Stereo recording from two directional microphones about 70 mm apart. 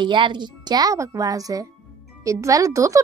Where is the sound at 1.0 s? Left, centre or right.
Right.